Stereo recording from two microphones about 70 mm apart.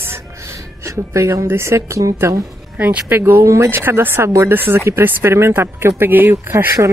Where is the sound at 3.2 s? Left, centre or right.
Right.